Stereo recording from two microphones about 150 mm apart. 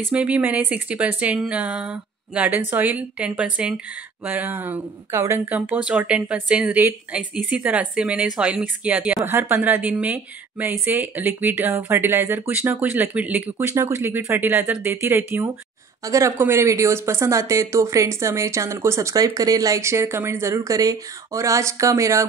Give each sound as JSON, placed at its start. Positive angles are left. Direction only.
{"t": 0.1, "sound": "speech", "side_deg": -10}